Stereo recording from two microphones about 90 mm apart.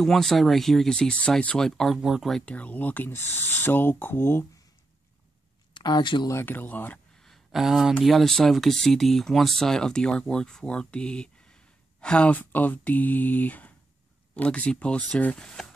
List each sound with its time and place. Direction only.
0.0 s speech: 5° left (ahead or behind)
2.0 s speech: 5° right (ahead or behind)
2.5 s speech: 15° left (ahead or behind)
5.8 s speech: 55° left (ahead or behind)
6.3 s speech: 25° left (ahead or behind)
7.2 s a sound: centre (ahead or behind)
8.0 s speech: centre (ahead or behind)